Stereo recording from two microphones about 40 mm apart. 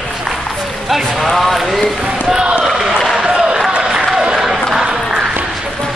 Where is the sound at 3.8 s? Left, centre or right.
Centre.